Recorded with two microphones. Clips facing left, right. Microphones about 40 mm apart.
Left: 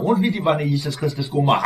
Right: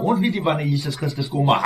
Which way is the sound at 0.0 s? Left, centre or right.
Centre.